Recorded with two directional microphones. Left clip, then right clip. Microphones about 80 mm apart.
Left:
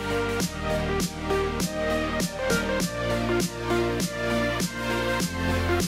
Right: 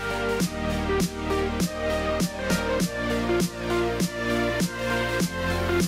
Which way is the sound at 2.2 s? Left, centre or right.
Centre.